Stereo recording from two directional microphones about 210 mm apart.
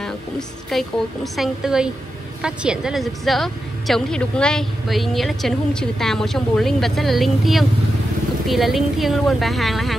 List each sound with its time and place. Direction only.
0.7 s a woman's voice: centre (ahead or behind)